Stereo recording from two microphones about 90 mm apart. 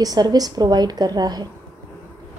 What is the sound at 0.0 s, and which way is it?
A woman's voice, 45° right (ahead or behind).